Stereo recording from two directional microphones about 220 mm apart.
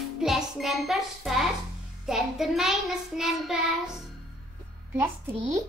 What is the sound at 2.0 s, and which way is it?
Child singing, centre (ahead or behind).